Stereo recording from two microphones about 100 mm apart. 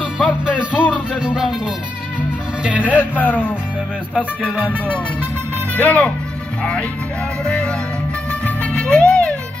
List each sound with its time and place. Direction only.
0.7 s music: 15° left (ahead or behind)
1.1 s music: 5° right (ahead or behind)
2.8 s speech: 15° left (ahead or behind)
4.6 s speech: 15° left (ahead or behind)
7.4 s speech: 10° left (ahead or behind)
8.3 s music: 15° left (ahead or behind)